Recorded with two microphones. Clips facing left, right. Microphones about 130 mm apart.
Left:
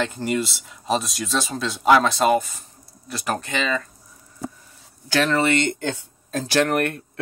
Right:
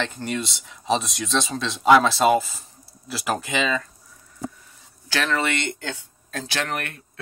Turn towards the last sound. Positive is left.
turn(degrees=50)  # may be behind; listen again after turning